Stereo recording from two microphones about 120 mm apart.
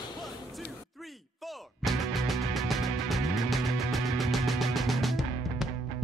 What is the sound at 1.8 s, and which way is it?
Music, centre (ahead or behind).